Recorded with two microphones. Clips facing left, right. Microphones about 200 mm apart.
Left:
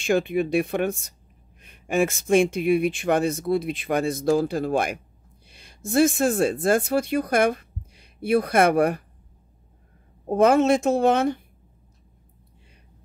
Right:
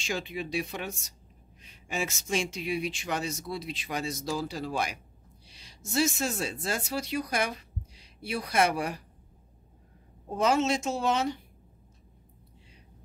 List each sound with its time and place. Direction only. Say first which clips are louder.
0.0 s speech: left 12 dB; 55° left (ahead or behind)
10.2 s speech: left 8 dB; 55° left (ahead or behind)